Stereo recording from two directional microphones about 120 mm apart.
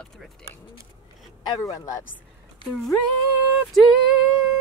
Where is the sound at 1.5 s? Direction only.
25° left (ahead or behind).